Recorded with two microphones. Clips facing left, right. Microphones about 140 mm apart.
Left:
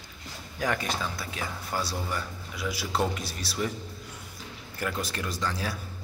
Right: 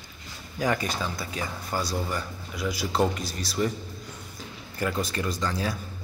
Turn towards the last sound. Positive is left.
turn(degrees=0)  # may be behind; listen again after turning